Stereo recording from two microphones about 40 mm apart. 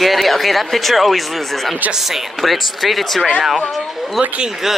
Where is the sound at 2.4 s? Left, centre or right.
Centre.